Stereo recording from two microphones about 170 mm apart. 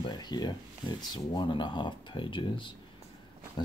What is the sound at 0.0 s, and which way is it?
Speech, 25° left (ahead or behind).